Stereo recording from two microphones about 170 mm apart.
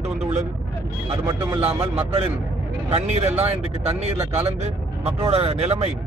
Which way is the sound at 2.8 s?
40° right (ahead or behind).